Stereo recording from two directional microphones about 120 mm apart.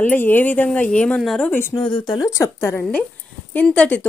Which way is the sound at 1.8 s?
40° left (ahead or behind).